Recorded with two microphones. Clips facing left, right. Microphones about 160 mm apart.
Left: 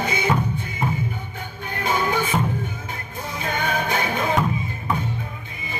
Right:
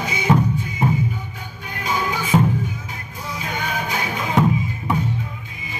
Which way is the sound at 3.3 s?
55° left (ahead or behind).